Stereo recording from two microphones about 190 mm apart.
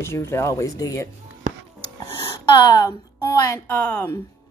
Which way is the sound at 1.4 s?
40° right (ahead or behind).